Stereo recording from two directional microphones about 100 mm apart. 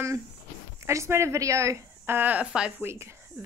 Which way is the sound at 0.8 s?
25° right (ahead or behind).